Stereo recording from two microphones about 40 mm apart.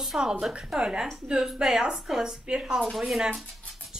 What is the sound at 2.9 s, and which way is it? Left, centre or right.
Speech, centre.